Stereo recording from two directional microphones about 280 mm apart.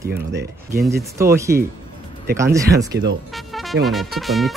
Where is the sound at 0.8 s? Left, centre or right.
Centre.